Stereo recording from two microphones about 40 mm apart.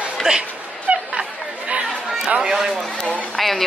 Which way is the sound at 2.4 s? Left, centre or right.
Centre.